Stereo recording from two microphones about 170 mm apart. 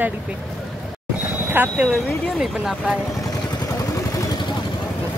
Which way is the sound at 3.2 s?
20° left (ahead or behind).